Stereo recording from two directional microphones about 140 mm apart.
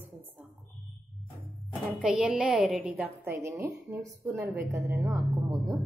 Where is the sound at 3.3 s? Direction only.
20° right (ahead or behind).